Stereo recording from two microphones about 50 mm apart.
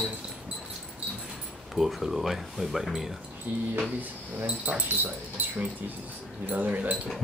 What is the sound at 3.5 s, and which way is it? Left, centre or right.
Speech, right.